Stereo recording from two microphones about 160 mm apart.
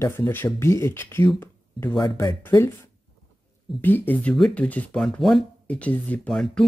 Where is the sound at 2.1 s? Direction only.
15° left (ahead or behind).